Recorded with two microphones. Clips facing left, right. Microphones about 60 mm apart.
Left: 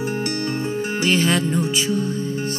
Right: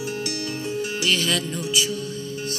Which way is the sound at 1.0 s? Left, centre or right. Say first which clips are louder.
Left 5 dB; left.